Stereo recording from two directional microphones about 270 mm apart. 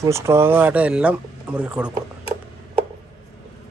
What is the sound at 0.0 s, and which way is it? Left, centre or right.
Speech, centre.